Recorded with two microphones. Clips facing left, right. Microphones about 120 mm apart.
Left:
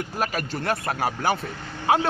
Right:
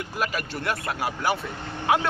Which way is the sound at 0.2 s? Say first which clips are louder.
Left 1 dB; 40° left (ahead or behind).